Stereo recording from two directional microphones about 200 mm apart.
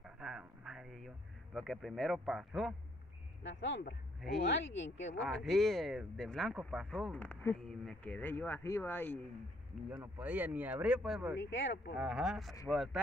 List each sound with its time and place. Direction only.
0.0 s a sound: 5° right (ahead or behind)
3.4 s speech: 65° left (ahead or behind)
5.2 s speech: centre (ahead or behind)
7.2 s speech: 10° left (ahead or behind)
9.9 s speech: 10° right (ahead or behind)
11.3 s speech: 65° left (ahead or behind)
12.0 s speech: 5° right (ahead or behind)